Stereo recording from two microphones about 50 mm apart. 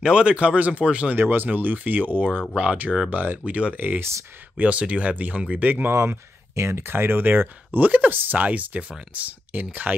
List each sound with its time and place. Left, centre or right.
0.0 s speech: centre
1.1 s speech: right
2.5 s speech: right
3.1 s speech: right
5.9 s speech: right